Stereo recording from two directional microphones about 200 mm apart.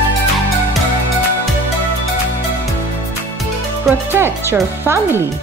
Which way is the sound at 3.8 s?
10° right (ahead or behind).